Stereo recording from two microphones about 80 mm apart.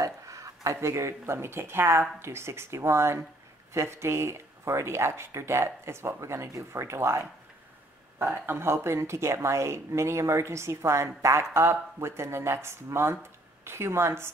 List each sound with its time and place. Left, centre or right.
0.0 s speech: right